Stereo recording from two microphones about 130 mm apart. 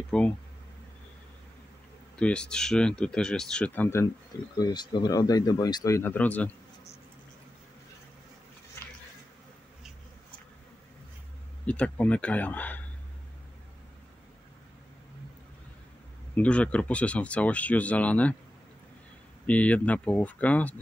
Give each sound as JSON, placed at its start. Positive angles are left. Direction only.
{"t": 0.1, "sound": "speech", "side_deg": 5}
{"t": 2.1, "sound": "speech", "side_deg": 10}
{"t": 4.6, "sound": "speech", "side_deg": 35}
{"t": 6.1, "sound": "speech", "side_deg": 10}
{"t": 11.6, "sound": "speech", "side_deg": 10}
{"t": 16.3, "sound": "speech", "side_deg": 10}
{"t": 19.4, "sound": "speech", "side_deg": 10}